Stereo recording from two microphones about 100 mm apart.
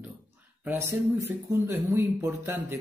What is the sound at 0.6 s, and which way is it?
Speech, 25° right (ahead or behind).